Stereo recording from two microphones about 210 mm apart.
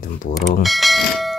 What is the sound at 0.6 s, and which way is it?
Speech, centre (ahead or behind).